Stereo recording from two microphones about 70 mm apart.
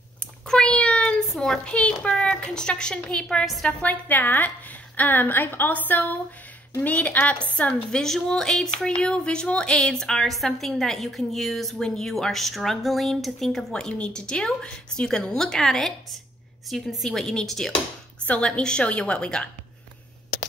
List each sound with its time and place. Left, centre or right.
0.5 s a sound: centre
1.3 s a woman's voice: centre
3.8 s a woman's voice: left; by 17.7 s centre
18.2 s a woman's voice: centre